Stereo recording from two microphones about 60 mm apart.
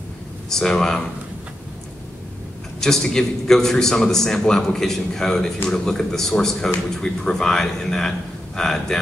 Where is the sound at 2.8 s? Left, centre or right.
Centre.